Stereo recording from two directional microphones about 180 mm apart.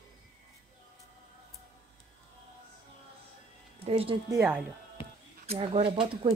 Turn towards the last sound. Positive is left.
turn(degrees=-35)  # may be behind; listen again after turning